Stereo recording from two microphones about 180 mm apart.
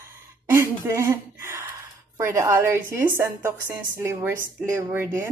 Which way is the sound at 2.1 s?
15° right (ahead or behind).